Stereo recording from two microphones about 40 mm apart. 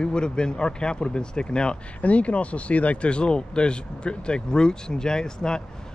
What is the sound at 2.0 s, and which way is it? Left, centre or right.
Speech, left.